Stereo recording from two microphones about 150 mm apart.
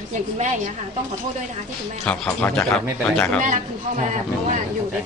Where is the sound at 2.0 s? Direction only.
10° left (ahead or behind).